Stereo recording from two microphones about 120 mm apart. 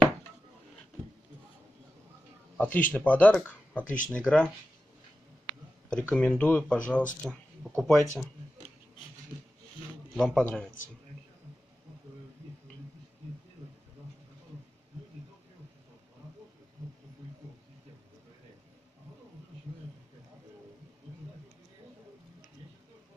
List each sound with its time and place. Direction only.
2.5 s a man's voice: 15° left (ahead or behind)
3.8 s speech: 90° left
4.1 s speech: 10° left (ahead or behind)
5.9 s speech: 10° left (ahead or behind)
10.1 s speech: 5° left (ahead or behind)